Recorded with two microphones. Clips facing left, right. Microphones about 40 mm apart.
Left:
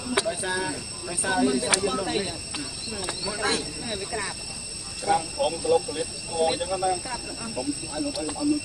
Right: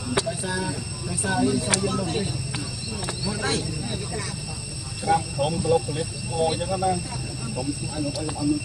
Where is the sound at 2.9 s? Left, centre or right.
Centre.